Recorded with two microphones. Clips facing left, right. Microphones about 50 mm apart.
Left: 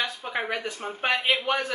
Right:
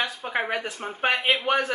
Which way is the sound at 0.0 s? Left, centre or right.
Centre.